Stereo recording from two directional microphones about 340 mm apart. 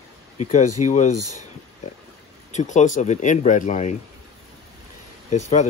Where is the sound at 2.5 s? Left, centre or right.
Left.